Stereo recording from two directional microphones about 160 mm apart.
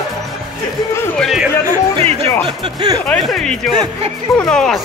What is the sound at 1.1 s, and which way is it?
Speech, centre (ahead or behind).